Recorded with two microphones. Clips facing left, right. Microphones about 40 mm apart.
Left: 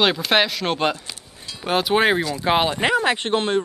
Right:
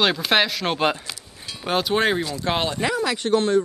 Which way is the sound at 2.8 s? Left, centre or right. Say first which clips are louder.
Left 4 dB; left.